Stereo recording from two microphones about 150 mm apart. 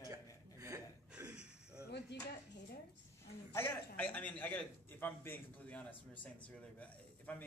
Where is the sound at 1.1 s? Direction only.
5° right (ahead or behind).